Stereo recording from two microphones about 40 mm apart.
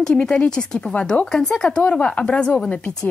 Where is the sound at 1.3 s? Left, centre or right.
Centre.